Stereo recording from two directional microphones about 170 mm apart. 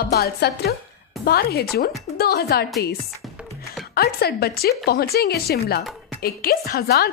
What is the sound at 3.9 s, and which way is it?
A woman's voice, 65° left (ahead or behind).